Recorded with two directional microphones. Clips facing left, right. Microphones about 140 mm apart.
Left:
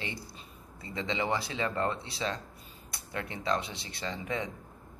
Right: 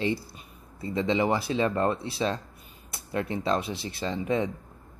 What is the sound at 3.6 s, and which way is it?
Speech, 20° left (ahead or behind).